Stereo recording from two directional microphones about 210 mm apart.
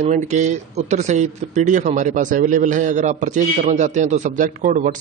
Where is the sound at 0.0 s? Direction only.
35° right (ahead or behind).